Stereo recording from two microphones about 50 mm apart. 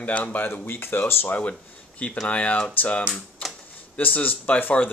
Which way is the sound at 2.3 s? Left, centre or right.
Left.